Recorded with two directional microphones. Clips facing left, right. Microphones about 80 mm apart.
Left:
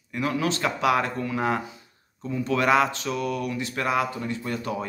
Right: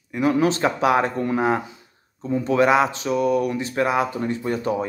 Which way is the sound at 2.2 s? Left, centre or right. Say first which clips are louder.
Right 5 dB; right.